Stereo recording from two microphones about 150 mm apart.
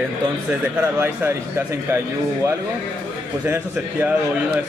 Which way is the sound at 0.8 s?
15° right (ahead or behind).